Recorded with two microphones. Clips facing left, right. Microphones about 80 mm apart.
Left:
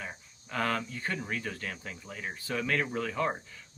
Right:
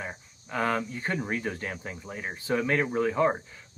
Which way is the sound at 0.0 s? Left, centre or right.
Centre.